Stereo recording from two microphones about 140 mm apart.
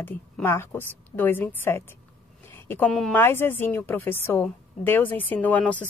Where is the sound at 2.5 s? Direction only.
15° left (ahead or behind).